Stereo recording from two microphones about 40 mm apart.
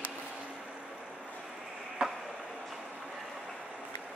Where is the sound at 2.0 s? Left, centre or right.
Centre.